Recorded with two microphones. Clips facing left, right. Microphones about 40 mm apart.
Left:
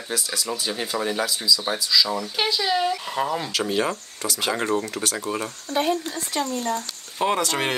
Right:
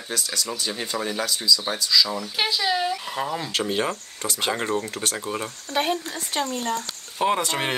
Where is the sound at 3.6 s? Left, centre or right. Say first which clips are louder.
Left 2 dB; centre.